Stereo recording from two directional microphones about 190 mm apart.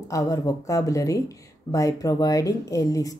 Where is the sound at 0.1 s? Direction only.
15° left (ahead or behind).